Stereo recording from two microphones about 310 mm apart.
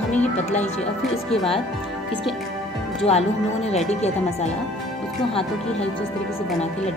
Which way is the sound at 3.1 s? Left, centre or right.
Left.